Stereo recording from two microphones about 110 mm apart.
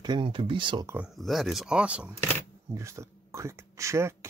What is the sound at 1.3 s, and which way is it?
Speech, centre (ahead or behind).